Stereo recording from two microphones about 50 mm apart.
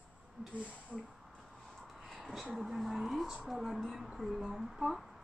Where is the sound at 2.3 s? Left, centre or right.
Centre.